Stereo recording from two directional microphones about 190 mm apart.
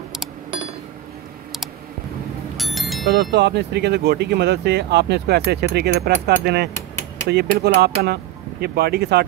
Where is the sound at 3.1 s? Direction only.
60° right (ahead or behind).